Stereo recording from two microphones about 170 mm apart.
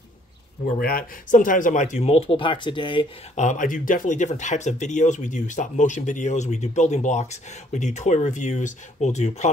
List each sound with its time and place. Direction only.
0.7 s speech: 60° left (ahead or behind); by 3.1 s 30° left (ahead or behind)
3.3 s speech: 50° left (ahead or behind)